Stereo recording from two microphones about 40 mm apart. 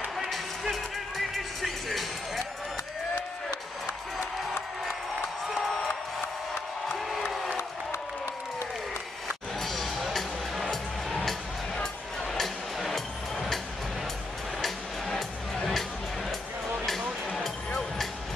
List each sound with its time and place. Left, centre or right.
0.3 s music: centre
3.2 s crowd: left
5.7 s crowd: centre
9.6 s music: centre
14.6 s music: centre